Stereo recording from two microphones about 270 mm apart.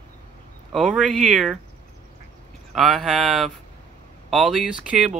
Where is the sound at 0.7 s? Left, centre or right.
Centre.